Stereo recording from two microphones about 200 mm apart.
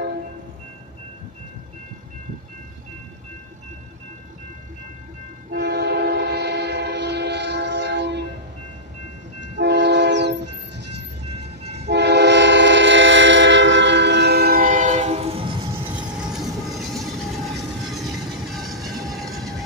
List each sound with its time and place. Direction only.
5.5 s train: 55° right (ahead or behind)
9.6 s train: 60° right (ahead or behind); by 15.6 s 25° right (ahead or behind)
15.8 s train: 5° right (ahead or behind)
16.7 s vehicle: centre (ahead or behind)
17.8 s train: centre (ahead or behind)